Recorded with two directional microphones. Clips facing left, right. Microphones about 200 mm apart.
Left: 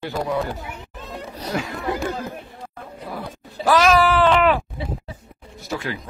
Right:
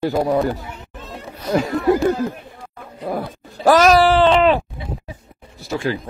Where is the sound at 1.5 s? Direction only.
35° right (ahead or behind).